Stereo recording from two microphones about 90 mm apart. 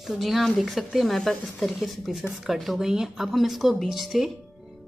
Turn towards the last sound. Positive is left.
turn(degrees=0)  # may be behind; listen again after turning